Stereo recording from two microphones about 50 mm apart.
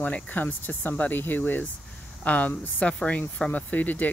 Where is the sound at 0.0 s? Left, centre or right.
Left.